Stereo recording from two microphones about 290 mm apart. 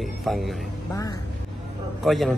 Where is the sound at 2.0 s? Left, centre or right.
Centre.